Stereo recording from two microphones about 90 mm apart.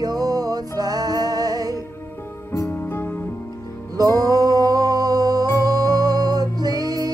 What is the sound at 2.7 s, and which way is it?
Music, 25° left (ahead or behind).